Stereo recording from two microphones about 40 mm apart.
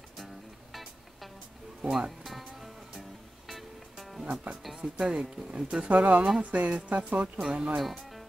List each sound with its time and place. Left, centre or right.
1.8 s music: centre
4.8 s speech: centre
5.9 s speech: right
7.4 s speech: centre